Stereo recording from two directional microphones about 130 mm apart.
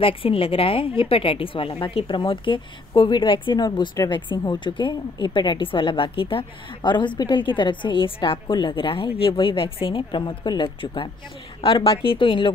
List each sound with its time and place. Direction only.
0.0 s a woman's voice: 45° left (ahead or behind)